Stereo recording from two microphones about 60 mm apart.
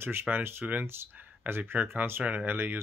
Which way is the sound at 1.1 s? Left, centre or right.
Right.